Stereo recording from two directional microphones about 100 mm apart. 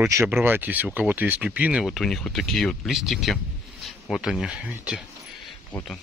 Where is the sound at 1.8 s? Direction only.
5° left (ahead or behind).